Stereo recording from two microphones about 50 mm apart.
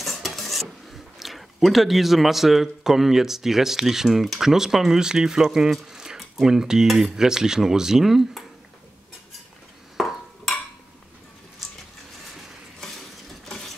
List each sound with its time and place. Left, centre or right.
0.0 s dishes: centre
6.4 s speech: centre
13.5 s a sound: centre